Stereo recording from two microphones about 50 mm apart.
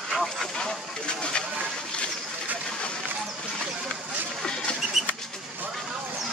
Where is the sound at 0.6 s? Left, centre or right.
Centre.